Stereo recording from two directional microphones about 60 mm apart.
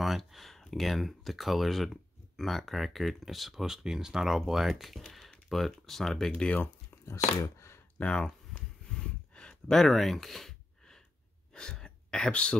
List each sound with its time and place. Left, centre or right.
0.0 s speech: centre
7.1 s chopping: left
8.0 s a sound: centre